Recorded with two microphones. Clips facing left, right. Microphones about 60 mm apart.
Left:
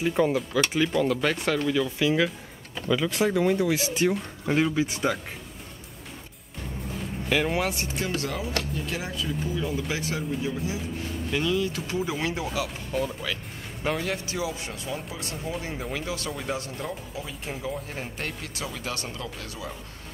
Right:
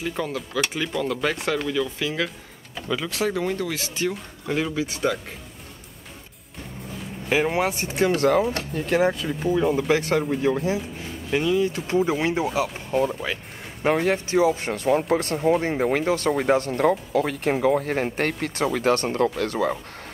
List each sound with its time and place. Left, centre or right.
0.0 s speech: centre
7.2 s speech: right
11.2 s speech: right